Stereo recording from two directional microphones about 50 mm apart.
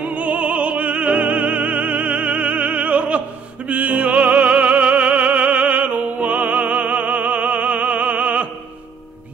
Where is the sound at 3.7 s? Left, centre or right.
Right.